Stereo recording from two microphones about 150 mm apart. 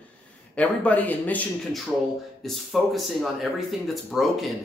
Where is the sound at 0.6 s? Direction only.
10° left (ahead or behind).